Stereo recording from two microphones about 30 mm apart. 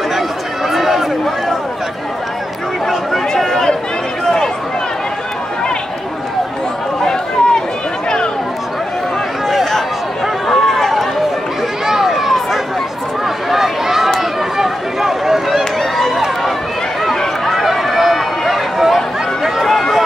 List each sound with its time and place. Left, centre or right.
0.7 s run: centre
2.9 s chatter: centre
4.2 s a sound: centre
7.0 s chatter: centre
10.5 s run: centre
11.8 s a sound: centre
13.5 s a sound: centre
14.6 s run: centre
15.5 s run: centre
17.5 s run: centre